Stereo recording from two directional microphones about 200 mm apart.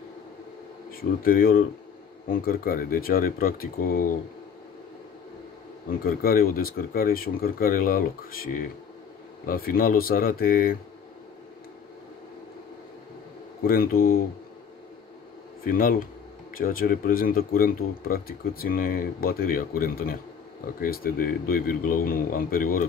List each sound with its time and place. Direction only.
1.2 s speech: 45° left (ahead or behind)
5.9 s speech: 45° left (ahead or behind)
13.6 s speech: 45° left (ahead or behind)
15.6 s speech: 45° left (ahead or behind)